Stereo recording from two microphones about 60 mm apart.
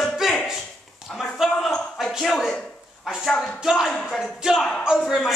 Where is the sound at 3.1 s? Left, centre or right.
Centre.